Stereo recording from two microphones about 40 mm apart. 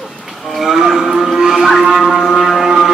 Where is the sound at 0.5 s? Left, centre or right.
Centre.